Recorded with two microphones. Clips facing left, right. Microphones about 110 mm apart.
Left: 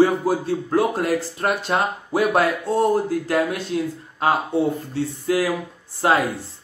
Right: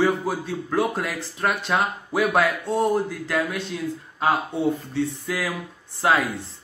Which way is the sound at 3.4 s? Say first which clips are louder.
Left 4 dB; 40° left (ahead or behind).